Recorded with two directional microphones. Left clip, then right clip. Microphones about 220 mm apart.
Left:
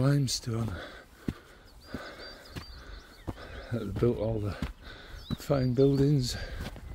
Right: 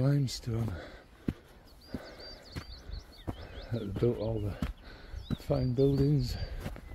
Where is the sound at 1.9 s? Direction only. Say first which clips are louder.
Left 3 dB; 25° left (ahead or behind).